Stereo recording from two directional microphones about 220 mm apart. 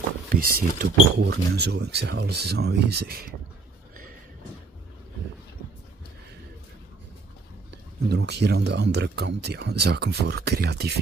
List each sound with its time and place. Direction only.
0.3 s speech: 40° right (ahead or behind)
8.1 s speech: 50° right (ahead or behind)